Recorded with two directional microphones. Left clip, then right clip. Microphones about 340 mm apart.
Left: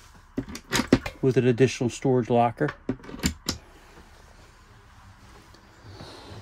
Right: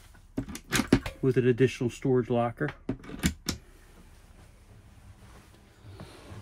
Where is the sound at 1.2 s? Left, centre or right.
Centre.